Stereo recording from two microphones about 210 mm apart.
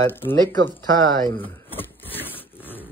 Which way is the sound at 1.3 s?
10° left (ahead or behind).